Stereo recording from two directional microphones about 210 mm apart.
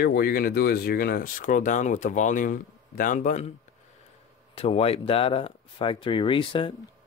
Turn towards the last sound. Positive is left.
turn(degrees=25)  # may be behind; listen again after turning